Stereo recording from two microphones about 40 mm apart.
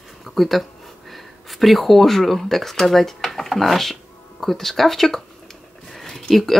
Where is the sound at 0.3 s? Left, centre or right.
Centre.